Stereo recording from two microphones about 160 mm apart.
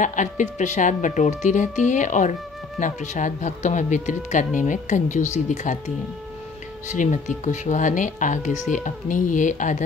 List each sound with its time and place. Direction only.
0.0 s speech: 50° left (ahead or behind)
6.9 s speech: 50° left (ahead or behind)